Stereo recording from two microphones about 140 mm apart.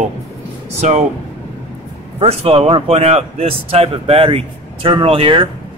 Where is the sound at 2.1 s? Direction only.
45° right (ahead or behind).